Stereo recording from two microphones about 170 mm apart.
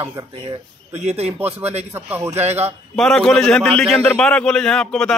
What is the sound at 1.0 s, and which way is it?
Speech, 40° right (ahead or behind).